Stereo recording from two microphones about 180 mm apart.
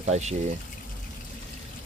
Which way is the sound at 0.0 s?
35° right (ahead or behind).